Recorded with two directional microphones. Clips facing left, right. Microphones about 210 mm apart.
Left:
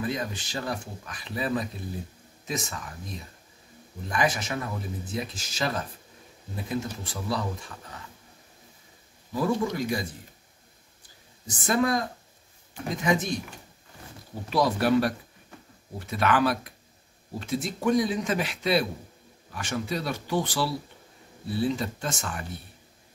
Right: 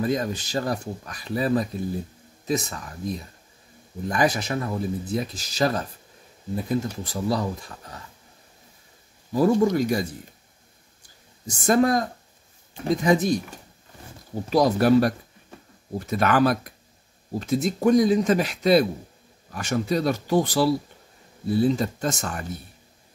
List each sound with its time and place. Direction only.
0.0 s speech: 40° right (ahead or behind)
4.1 s speech: 40° right (ahead or behind)
9.3 s speech: 45° right (ahead or behind)
11.5 s speech: 45° right (ahead or behind)
14.5 s speech: 40° right (ahead or behind)